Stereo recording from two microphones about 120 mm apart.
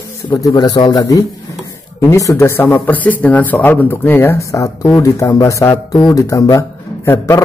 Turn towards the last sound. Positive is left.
turn(degrees=20)  # may be behind; listen again after turning